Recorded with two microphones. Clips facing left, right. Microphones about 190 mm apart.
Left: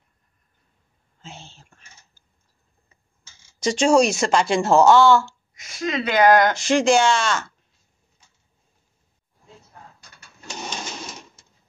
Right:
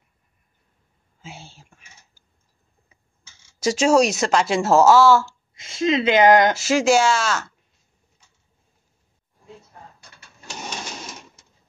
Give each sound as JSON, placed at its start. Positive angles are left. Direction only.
{"t": 1.2, "sound": "speech", "side_deg": -10}
{"t": 3.5, "sound": "speech", "side_deg": -5}
{"t": 5.5, "sound": "speech", "side_deg": -25}
{"t": 6.5, "sound": "speech", "side_deg": -5}